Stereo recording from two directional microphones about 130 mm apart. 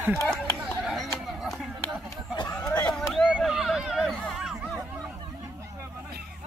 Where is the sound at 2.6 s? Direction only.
30° left (ahead or behind).